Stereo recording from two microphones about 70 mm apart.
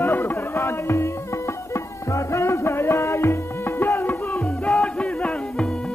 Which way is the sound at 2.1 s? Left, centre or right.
Left.